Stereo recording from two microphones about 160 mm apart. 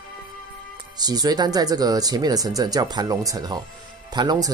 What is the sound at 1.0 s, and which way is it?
Speech, 25° right (ahead or behind).